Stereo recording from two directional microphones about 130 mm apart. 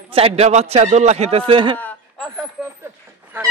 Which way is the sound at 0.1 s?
50° right (ahead or behind).